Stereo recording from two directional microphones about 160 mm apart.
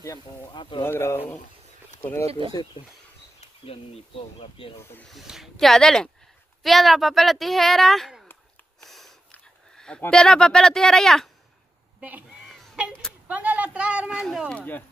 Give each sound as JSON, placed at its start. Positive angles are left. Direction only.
{"t": 0.0, "sound": "speech", "side_deg": 25}
{"t": 0.8, "sound": "speech", "side_deg": 15}
{"t": 2.5, "sound": "speech", "side_deg": 30}
{"t": 4.9, "sound": "speech", "side_deg": 0}
{"t": 8.8, "sound": "a sound", "side_deg": 0}
{"t": 12.0, "sound": "a sound", "side_deg": -10}
{"t": 13.3, "sound": "speech", "side_deg": -10}